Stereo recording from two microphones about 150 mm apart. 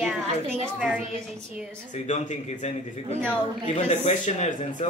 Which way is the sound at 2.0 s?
50° left (ahead or behind).